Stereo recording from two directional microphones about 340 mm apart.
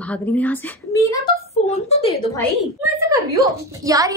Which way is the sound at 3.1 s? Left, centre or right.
Centre.